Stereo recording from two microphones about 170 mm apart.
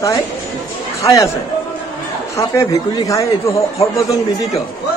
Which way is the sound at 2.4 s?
15° left (ahead or behind).